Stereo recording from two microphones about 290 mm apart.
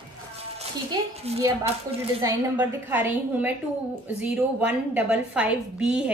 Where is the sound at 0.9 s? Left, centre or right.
Centre.